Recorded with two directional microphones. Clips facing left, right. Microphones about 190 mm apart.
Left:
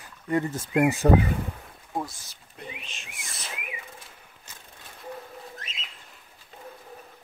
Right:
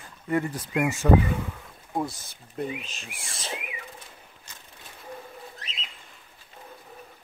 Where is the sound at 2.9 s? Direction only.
35° right (ahead or behind).